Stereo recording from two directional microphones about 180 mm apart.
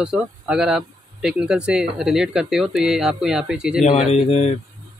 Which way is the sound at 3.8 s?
35° left (ahead or behind).